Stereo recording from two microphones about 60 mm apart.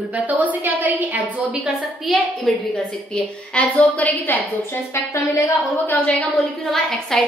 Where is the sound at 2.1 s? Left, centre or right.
Centre.